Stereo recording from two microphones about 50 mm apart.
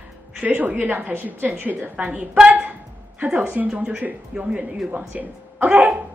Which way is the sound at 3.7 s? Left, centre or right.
Right.